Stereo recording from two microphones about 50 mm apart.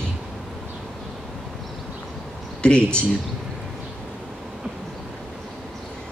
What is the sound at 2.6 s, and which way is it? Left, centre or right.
Speech, centre.